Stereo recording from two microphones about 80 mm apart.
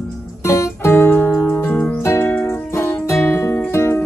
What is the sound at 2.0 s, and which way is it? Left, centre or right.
Music, left.